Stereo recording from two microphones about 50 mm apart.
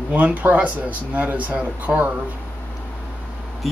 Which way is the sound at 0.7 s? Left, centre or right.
Right.